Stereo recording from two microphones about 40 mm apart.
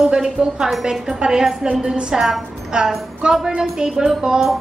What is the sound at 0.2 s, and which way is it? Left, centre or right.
A woman's voice, centre.